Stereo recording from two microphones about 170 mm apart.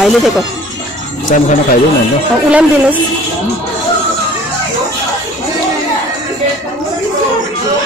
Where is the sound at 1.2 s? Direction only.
50° left (ahead or behind).